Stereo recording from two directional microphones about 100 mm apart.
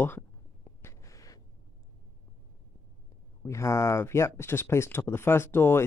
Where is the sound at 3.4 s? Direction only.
30° left (ahead or behind).